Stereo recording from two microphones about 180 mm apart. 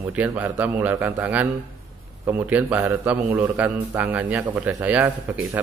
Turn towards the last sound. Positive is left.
turn(degrees=-10)  # may be behind; listen again after turning